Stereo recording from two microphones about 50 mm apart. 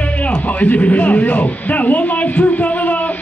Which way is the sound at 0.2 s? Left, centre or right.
Left.